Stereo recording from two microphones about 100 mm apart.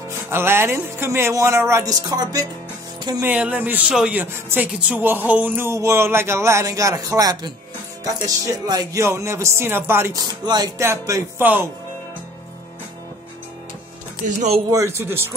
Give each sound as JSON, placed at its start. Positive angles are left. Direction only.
{"t": 0.3, "sound": "speech", "side_deg": -25}
{"t": 3.3, "sound": "speech", "side_deg": -15}
{"t": 9.0, "sound": "speech", "side_deg": -25}
{"t": 10.1, "sound": "music", "side_deg": -45}
{"t": 10.8, "sound": "speech", "side_deg": -25}
{"t": 14.7, "sound": "speech", "side_deg": -30}